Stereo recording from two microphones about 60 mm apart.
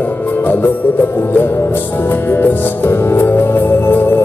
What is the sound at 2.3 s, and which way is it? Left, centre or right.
Music, left.